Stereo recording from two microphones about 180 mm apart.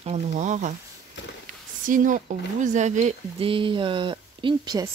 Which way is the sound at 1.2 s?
80° left.